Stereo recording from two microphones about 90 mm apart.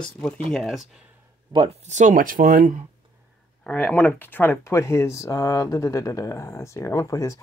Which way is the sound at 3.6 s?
15° left (ahead or behind).